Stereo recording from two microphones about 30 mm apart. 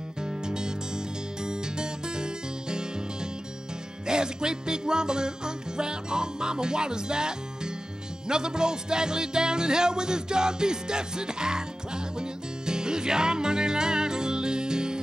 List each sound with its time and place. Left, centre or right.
0.2 s music: right
4.1 s music: right